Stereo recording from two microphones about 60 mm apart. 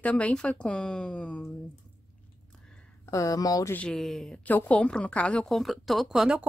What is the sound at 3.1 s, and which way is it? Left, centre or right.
Speech, left.